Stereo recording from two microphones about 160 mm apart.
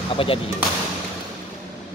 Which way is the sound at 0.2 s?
35° left (ahead or behind).